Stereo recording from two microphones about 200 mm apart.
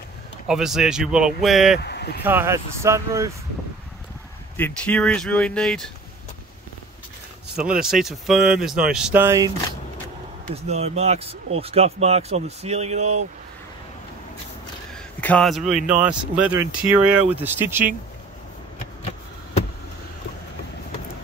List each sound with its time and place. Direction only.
0.5 s speech: centre (ahead or behind)
1.8 s speech: 55° left (ahead or behind)
2.2 s speech: 10° right (ahead or behind)
4.6 s speech: 10° left (ahead or behind)
7.8 s speech: centre (ahead or behind)
10.5 s speech: 30° right (ahead or behind)
15.0 s speech: 5° left (ahead or behind); by 17.8 s 10° right (ahead or behind)